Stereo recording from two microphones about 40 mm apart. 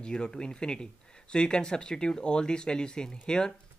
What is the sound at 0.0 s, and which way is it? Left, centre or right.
Speech, left.